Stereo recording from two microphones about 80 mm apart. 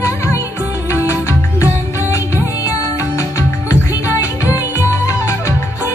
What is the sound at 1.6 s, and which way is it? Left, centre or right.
Music, left.